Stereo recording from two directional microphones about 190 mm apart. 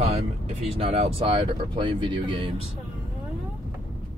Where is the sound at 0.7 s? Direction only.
30° right (ahead or behind).